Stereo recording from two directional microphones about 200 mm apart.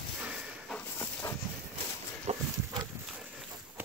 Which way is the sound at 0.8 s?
10° left (ahead or behind).